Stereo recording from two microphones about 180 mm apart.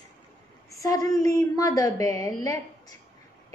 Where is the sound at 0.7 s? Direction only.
20° left (ahead or behind).